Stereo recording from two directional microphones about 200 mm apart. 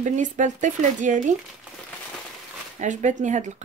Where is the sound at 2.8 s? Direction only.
35° right (ahead or behind).